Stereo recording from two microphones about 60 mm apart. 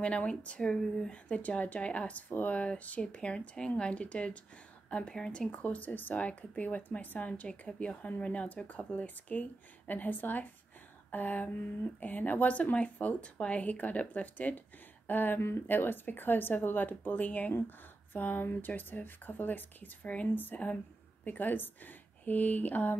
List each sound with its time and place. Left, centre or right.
0.0 s speech: centre